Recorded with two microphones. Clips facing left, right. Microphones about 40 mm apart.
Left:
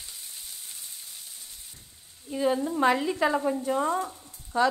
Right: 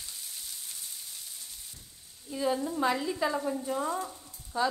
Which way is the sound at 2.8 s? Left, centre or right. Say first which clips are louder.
Left 5 dB; left.